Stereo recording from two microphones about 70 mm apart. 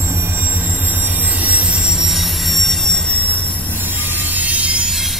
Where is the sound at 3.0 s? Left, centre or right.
Left.